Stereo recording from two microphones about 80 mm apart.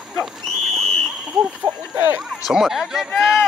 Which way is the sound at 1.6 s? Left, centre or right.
Right.